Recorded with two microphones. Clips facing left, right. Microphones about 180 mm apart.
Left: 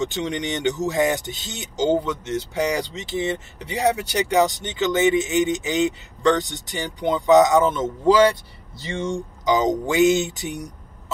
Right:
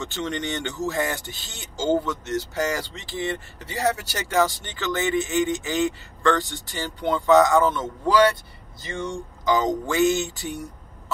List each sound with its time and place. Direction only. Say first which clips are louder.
0.0 s speech: left 4 dB; 15° left (ahead or behind)